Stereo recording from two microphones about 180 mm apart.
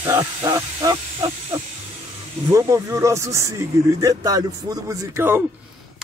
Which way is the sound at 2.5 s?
15° right (ahead or behind).